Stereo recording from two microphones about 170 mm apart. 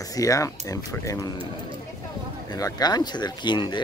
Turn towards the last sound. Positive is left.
turn(degrees=25)  # may be behind; listen again after turning